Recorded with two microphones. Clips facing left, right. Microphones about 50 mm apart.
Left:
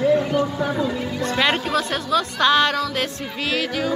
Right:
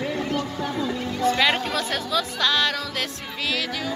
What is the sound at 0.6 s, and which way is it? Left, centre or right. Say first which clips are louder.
A woman's voice: left 3 dB; centre.